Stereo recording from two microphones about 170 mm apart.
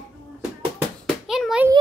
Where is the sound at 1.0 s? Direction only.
Centre (ahead or behind).